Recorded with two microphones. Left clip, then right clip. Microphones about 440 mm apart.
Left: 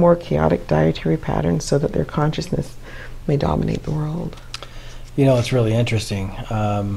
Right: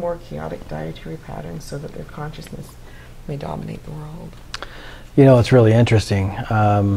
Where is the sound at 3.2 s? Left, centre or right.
Left.